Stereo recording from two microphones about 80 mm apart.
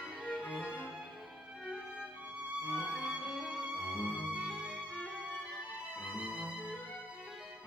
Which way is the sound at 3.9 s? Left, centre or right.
Left.